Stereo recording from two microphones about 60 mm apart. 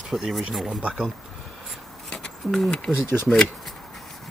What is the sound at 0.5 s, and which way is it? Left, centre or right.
Speech, centre.